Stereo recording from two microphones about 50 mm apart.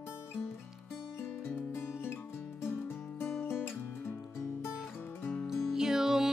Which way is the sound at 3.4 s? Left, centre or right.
Left.